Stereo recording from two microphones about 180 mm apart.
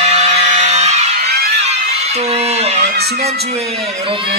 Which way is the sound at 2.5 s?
35° right (ahead or behind).